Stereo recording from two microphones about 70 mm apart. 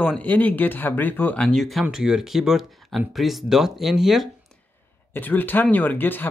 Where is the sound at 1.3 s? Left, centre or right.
Centre.